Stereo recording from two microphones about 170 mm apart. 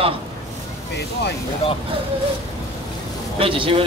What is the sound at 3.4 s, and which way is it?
Speech, 30° right (ahead or behind).